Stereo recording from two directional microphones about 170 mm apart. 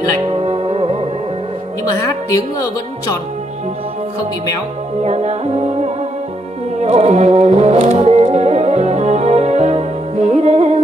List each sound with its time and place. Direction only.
0.3 s music: 35° right (ahead or behind)
5.0 s music: 40° right (ahead or behind)